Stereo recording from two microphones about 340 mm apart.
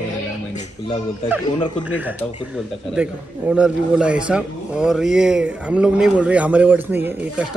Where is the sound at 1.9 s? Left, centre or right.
Centre.